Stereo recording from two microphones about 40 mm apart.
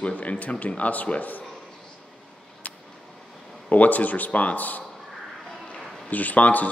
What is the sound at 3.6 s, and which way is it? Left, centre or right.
A man's voice, left.